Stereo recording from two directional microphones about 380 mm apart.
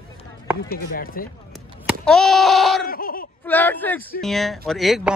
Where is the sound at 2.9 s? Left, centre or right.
Left.